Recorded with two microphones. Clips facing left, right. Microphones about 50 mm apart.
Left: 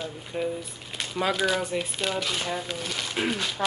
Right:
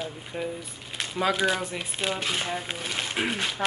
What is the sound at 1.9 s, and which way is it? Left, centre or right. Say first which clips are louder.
Speech: even; right.